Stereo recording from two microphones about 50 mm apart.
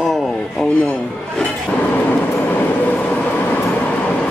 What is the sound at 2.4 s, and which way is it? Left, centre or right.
Train, left.